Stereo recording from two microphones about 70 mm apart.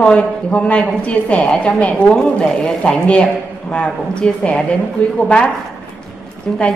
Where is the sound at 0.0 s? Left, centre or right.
Centre.